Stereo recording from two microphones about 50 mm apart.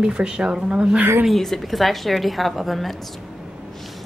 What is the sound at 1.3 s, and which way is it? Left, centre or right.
A woman's voice, centre.